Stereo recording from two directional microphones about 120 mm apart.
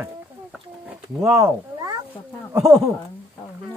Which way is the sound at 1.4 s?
30° right (ahead or behind).